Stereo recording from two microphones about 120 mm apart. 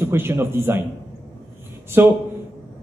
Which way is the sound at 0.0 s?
20° right (ahead or behind).